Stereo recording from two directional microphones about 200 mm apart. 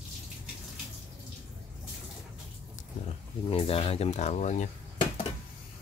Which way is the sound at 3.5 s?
30° left (ahead or behind).